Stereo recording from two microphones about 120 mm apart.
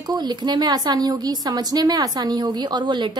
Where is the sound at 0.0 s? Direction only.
35° right (ahead or behind).